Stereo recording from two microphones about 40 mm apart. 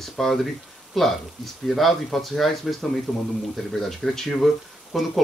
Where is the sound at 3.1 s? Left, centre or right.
Centre.